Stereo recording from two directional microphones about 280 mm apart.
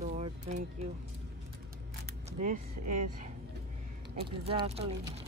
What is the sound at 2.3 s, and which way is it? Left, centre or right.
Speech, right.